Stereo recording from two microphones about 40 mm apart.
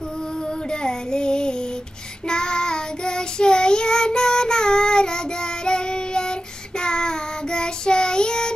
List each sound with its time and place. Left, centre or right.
0.7 s child singing: left